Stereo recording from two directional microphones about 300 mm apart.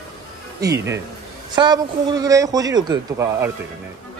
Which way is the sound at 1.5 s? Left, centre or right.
Centre.